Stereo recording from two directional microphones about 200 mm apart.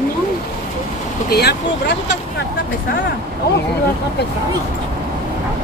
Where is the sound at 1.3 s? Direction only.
55° left (ahead or behind).